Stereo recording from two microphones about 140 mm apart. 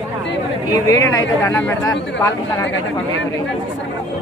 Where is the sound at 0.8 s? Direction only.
25° left (ahead or behind).